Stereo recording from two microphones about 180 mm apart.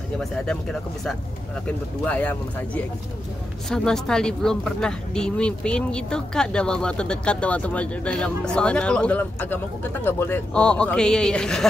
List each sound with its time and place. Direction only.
0.2 s speech: 5° left (ahead or behind)